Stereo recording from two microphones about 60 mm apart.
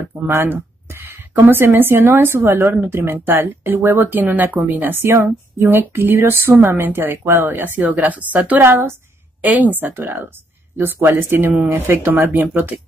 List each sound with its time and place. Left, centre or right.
0.1 s speech: right
0.5 s speech: right
8.6 s a woman's voice: right
9.4 s speech: right
11.5 s speech: right
11.9 s speech: right